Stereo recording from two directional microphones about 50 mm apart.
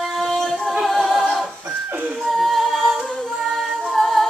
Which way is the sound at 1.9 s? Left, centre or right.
Right.